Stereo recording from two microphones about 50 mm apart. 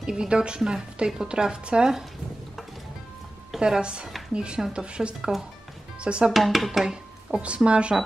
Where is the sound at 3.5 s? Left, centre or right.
Centre.